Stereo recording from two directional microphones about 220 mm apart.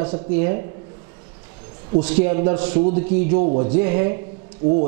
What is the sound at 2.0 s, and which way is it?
Speech, 10° right (ahead or behind).